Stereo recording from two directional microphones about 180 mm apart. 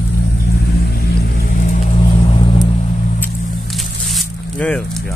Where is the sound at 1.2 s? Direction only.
55° left (ahead or behind); by 2.5 s 30° left (ahead or behind).